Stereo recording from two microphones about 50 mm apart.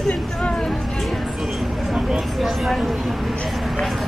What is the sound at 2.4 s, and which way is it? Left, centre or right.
Speech, centre.